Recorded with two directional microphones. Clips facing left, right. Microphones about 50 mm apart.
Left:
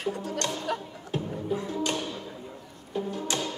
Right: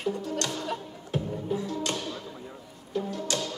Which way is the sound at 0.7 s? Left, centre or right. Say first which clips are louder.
Left 2 dB; left.